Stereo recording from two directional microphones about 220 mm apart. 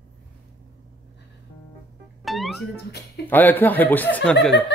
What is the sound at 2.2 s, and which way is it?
Music, centre (ahead or behind).